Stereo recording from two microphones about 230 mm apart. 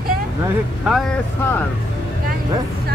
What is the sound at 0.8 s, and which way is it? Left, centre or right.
Speech, centre.